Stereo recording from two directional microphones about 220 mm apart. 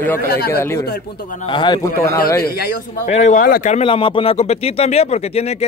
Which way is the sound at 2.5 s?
45° left (ahead or behind).